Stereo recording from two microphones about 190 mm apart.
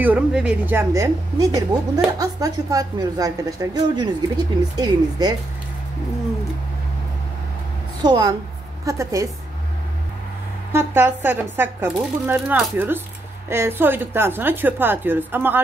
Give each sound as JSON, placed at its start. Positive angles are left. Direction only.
{"t": 0.0, "sound": "a woman's voice", "side_deg": -5}
{"t": 8.0, "sound": "a woman's voice", "side_deg": -20}
{"t": 10.7, "sound": "speech", "side_deg": -10}